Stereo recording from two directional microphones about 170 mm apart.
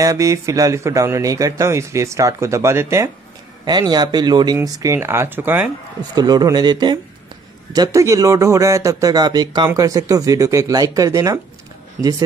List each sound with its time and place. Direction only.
0.0 s speech: 20° right (ahead or behind)
6.1 s speech: 25° right (ahead or behind)